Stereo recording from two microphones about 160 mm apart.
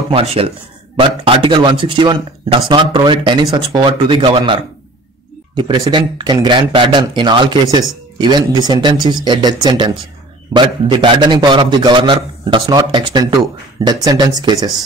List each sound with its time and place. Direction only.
0.1 s a man's voice: 35° right (ahead or behind)